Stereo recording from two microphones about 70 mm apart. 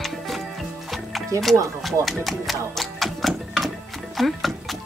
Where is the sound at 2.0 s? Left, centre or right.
Centre.